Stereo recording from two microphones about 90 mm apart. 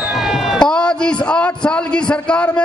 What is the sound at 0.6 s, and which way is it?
A man's voice, 10° left (ahead or behind).